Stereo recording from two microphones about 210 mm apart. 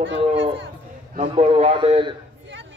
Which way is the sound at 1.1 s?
30° right (ahead or behind).